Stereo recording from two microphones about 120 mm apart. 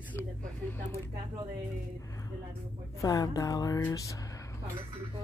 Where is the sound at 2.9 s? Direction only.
30° left (ahead or behind).